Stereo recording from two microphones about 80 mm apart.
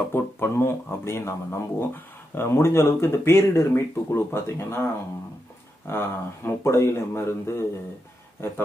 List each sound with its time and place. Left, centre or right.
0.1 s speech: left
5.9 s speech: left